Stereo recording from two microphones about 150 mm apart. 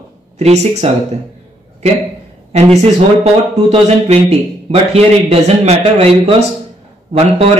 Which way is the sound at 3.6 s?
45° right (ahead or behind).